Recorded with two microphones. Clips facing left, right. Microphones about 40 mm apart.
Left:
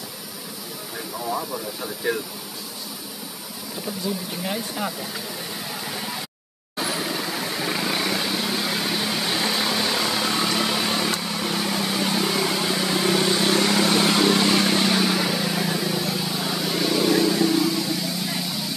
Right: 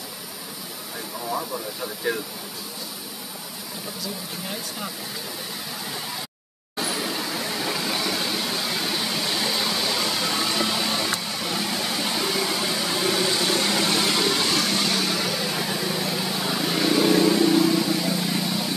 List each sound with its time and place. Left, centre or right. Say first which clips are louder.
1.3 s speech: even; centre
4.0 s speech: left 6 dB; left
6.8 s vehicle: left 1 dB; centre
8.3 s a sound: left 2 dB; centre
13.5 s vehicle: left 3 dB; centre